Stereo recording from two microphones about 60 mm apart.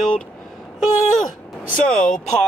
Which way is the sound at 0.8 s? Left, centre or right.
Centre.